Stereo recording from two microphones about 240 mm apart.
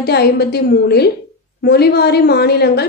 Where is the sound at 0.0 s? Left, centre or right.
Left.